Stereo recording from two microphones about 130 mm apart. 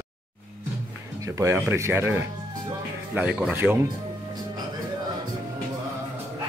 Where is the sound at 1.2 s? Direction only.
20° right (ahead or behind).